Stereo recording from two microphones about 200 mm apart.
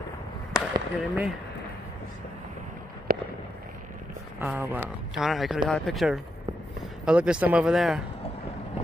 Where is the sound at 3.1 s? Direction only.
50° right (ahead or behind).